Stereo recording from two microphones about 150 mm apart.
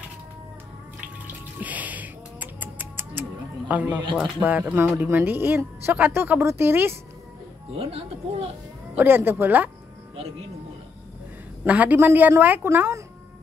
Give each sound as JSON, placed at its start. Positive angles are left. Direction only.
{"t": 1.2, "sound": "music", "side_deg": -10}
{"t": 4.2, "sound": "speech", "side_deg": -10}
{"t": 7.7, "sound": "speech", "side_deg": -40}
{"t": 8.9, "sound": "speech", "side_deg": -15}
{"t": 11.6, "sound": "speech", "side_deg": -10}